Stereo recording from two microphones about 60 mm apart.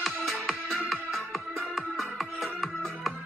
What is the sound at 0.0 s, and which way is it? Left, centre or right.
Music, centre.